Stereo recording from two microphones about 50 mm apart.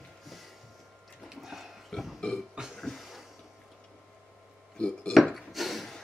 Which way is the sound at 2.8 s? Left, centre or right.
Centre.